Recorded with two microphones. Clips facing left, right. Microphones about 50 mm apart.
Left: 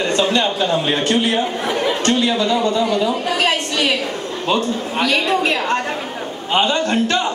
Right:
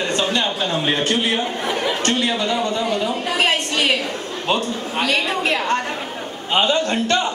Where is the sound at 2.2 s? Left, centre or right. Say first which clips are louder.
Left 3 dB; right.